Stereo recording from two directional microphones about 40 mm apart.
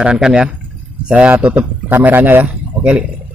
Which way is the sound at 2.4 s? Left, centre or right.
Right.